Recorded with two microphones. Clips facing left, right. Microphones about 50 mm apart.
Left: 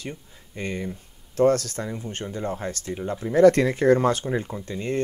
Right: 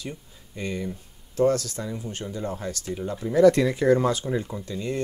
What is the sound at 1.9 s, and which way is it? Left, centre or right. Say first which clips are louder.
Speech: left 1 dB; left.